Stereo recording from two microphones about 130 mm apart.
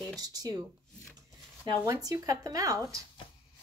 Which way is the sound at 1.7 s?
25° right (ahead or behind).